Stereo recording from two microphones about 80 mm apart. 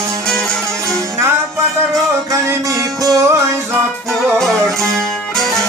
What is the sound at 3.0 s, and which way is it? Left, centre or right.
Music, right.